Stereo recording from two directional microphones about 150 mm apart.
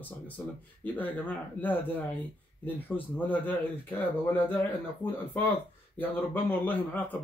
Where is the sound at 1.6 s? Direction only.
10° left (ahead or behind).